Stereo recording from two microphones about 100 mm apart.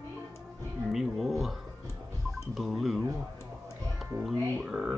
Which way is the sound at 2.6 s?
Centre (ahead or behind).